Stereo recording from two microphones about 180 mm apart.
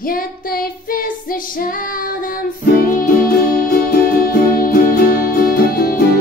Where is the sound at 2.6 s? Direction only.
55° left (ahead or behind).